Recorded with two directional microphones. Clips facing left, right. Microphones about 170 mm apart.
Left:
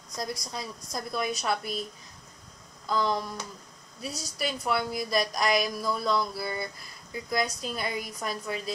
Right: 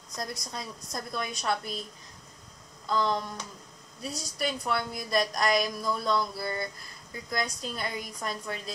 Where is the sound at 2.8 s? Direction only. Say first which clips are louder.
Even; 5° left (ahead or behind).